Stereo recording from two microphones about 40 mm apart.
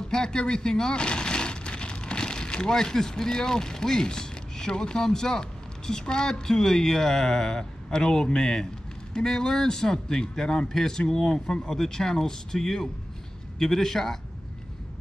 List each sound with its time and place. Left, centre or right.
0.1 s speech: centre